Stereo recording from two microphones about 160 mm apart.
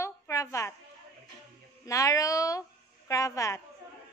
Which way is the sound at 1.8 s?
20° left (ahead or behind).